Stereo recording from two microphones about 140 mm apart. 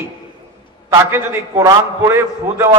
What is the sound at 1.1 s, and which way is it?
A man's voice, 20° right (ahead or behind).